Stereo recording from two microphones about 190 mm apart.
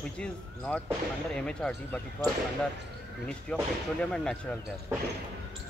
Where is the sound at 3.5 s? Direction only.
5° left (ahead or behind).